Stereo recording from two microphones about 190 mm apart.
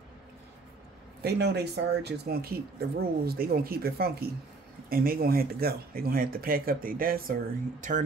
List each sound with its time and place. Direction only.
1.2 s speech: 60° right (ahead or behind)